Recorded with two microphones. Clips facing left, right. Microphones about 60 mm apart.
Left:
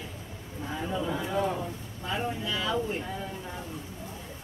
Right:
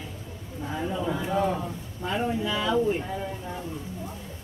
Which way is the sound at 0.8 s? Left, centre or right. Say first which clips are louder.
Right 2 dB; centre.